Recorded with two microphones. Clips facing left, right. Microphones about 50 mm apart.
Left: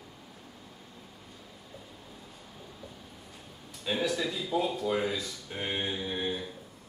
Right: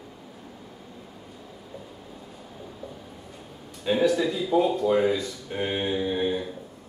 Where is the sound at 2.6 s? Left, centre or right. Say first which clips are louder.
Right 8 dB; centre.